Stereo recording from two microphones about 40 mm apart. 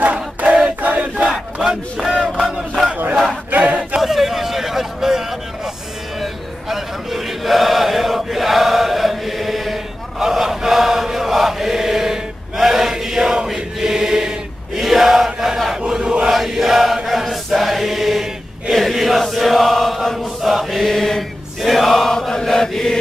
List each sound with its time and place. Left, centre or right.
0.0 s hands: right
0.8 s battle cry: right
1.6 s speech: centre
2.4 s a sound: centre
3.5 s a sound: right
4.0 s a sound: centre
6.7 s chant: centre
15.9 s chant: right
16.3 s choir: centre
18.7 s mantra: centre
21.5 s chant: centre